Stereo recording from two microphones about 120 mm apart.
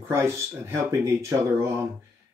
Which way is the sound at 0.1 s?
25° right (ahead or behind).